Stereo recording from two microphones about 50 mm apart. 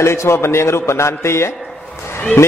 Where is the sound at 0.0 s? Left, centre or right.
Left.